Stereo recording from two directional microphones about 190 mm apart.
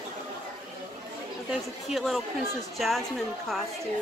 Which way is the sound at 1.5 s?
Centre (ahead or behind).